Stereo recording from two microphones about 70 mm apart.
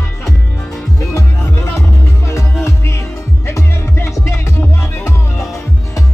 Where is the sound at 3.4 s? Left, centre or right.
Left.